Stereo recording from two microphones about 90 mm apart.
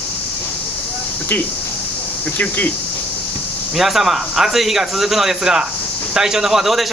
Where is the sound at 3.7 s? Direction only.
5° right (ahead or behind).